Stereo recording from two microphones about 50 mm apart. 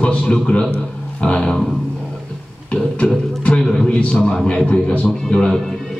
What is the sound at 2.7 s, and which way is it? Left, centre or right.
A man's voice, centre.